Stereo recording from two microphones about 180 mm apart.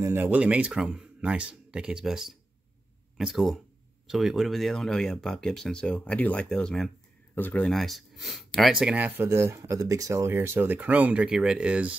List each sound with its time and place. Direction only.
0.0 s speech: 10° right (ahead or behind)